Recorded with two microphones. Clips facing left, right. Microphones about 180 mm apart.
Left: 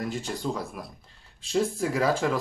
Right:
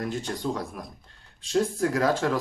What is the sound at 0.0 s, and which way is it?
Speech, 5° left (ahead or behind).